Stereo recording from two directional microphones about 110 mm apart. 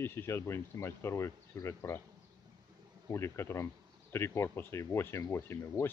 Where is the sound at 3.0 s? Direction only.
25° left (ahead or behind).